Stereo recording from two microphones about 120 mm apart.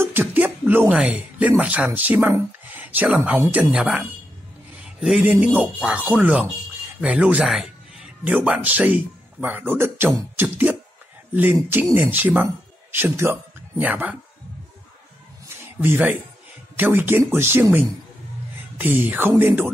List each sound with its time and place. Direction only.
0.0 s speech: 20° right (ahead or behind)
2.0 s a sound: 15° right (ahead or behind)
3.3 s speech: 15° right (ahead or behind)
10.3 s music: 15° right (ahead or behind)
11.7 s speech: 15° right (ahead or behind)
15.4 s a sound: 20° right (ahead or behind)
16.7 s speech: 15° right (ahead or behind)